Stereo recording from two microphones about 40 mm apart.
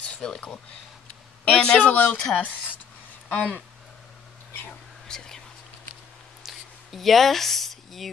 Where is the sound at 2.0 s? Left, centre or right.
Left.